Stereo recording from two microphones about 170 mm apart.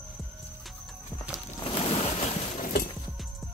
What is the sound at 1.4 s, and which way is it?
Boat, 35° left (ahead or behind).